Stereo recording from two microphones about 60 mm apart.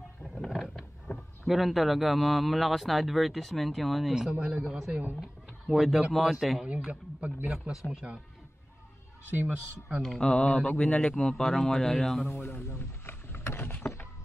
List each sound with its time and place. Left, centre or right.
0.5 s speech: centre
4.1 s speech: centre
6.9 s a man's voice: right
7.8 s a man's voice: centre
9.5 s speech: right
10.0 s speech: centre
10.3 s a man's voice: centre
12.2 s a sound: left